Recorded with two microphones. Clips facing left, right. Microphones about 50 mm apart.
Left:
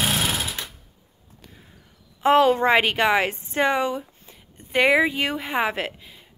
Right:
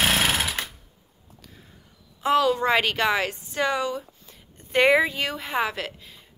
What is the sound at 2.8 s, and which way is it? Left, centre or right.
Speech, left.